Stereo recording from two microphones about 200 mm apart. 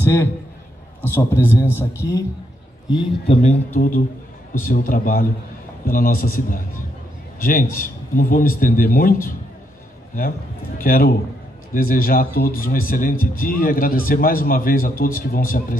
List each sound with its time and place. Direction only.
0.0 s a man's voice: 10° left (ahead or behind)
2.9 s speech: 25° left (ahead or behind); by 9.3 s 45° left (ahead or behind)
10.8 s speech: 45° left (ahead or behind)